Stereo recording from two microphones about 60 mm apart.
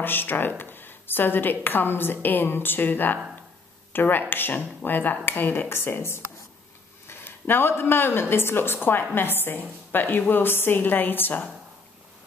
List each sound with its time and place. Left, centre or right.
0.0 s a woman's voice: left